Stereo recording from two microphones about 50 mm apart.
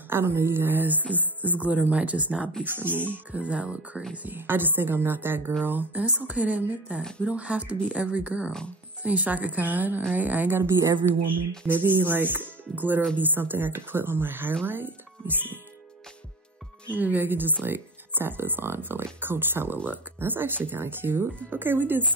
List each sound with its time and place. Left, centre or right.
0.1 s speech: right
2.6 s speech: right
3.3 s a woman's voice: right
4.2 s a woman's voice: right
7.0 s speech: centre
7.2 s a woman's voice: right
10.7 s speech: right
11.6 s speech: right
16.9 s speech: right